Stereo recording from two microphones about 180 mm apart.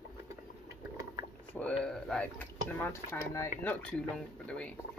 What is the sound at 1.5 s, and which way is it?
Speech, 5° left (ahead or behind).